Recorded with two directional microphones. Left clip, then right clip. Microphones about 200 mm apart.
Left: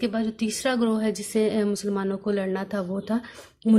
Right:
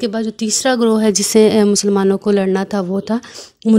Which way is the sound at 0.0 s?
45° right (ahead or behind).